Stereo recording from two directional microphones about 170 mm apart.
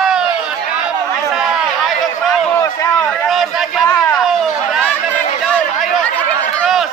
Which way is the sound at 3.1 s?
Centre (ahead or behind).